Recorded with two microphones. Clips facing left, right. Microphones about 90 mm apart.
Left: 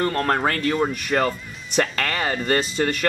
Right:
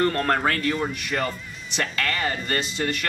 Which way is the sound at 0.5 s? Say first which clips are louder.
Left 3 dB; 40° left (ahead or behind).